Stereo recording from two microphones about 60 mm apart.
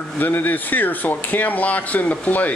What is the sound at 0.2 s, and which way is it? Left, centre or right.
Speech, left.